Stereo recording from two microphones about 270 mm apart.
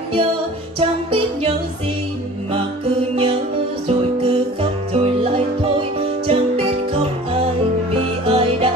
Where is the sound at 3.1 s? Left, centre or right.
Centre.